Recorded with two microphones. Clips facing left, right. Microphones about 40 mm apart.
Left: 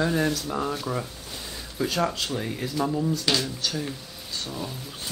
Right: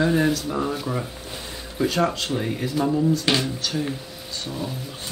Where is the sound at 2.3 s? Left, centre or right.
Centre.